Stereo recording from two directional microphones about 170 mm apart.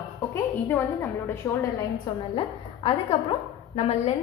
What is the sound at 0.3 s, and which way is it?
A woman's voice, 15° left (ahead or behind).